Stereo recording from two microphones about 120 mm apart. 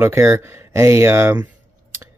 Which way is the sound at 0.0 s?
20° right (ahead or behind).